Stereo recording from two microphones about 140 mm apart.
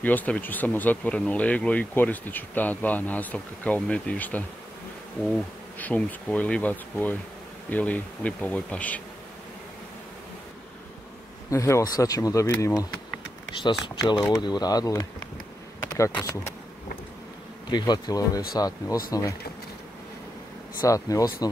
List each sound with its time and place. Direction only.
0.0 s speech: 10° left (ahead or behind)
11.5 s speech: 20° left (ahead or behind)
13.5 s bee: 35° left (ahead or behind)
14.3 s speech: 30° left (ahead or behind)
17.6 s bee: 30° left (ahead or behind)
18.5 s speech: 25° left (ahead or behind)
20.8 s speech: 25° left (ahead or behind)